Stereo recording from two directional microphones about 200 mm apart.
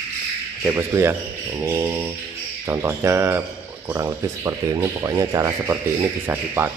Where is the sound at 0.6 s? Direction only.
15° right (ahead or behind).